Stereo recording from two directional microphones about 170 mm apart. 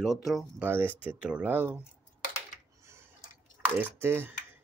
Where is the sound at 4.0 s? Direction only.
15° right (ahead or behind).